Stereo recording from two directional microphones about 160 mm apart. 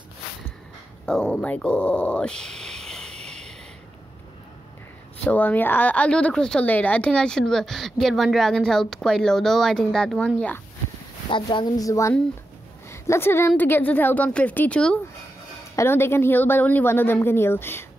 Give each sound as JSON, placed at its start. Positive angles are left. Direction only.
{"t": 1.0, "sound": "speech", "side_deg": 5}
{"t": 3.3, "sound": "a sound", "side_deg": 5}
{"t": 5.2, "sound": "a woman's voice", "side_deg": 10}
{"t": 11.2, "sound": "a woman's voice", "side_deg": 30}
{"t": 15.7, "sound": "a woman's voice", "side_deg": 15}